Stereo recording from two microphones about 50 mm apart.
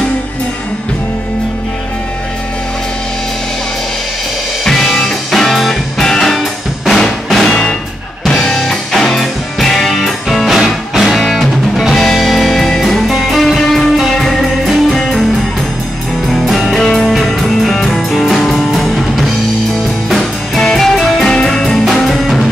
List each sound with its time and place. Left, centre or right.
4.6 s music: centre
6.9 s drum: centre
7.4 s music: centre
16.3 s music: centre